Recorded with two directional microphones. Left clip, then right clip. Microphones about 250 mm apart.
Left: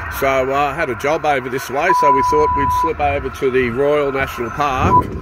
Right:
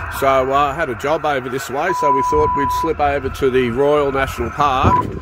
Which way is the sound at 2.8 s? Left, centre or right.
Right.